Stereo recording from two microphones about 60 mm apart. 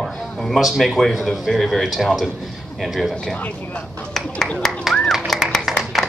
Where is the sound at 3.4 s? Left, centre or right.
Left.